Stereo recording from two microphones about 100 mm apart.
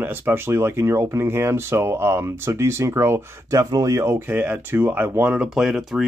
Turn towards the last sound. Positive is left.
turn(degrees=-5)  # may be behind; listen again after turning